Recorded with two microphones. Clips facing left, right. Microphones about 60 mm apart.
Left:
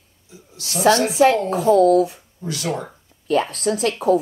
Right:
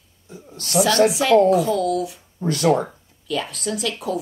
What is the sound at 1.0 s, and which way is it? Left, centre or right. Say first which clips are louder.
Speech: right 1 dB; left.